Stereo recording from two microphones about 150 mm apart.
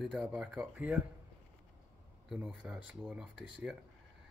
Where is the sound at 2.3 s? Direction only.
5° right (ahead or behind).